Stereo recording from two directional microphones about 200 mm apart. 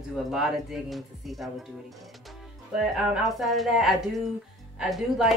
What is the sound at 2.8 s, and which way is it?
Speech, centre (ahead or behind).